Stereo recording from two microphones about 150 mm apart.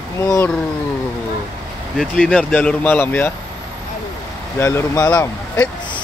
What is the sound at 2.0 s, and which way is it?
Speech, 5° left (ahead or behind).